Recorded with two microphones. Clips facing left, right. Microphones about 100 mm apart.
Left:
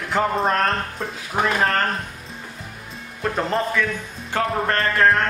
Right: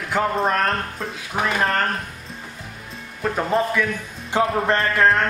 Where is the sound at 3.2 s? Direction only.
5° right (ahead or behind).